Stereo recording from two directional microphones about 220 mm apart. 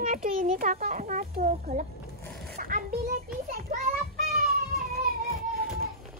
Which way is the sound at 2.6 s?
40° right (ahead or behind).